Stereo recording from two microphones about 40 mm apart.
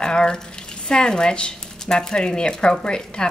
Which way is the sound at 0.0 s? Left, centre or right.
Left.